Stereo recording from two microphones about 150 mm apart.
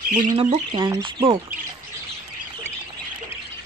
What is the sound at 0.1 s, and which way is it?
Speech, 65° right (ahead or behind).